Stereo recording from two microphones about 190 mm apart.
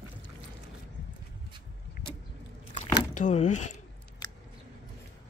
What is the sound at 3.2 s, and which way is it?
Speech, 40° left (ahead or behind).